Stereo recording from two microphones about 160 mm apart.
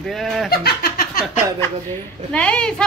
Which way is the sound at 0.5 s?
75° left (ahead or behind).